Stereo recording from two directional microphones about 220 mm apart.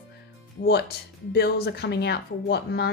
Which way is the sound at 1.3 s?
45° left (ahead or behind).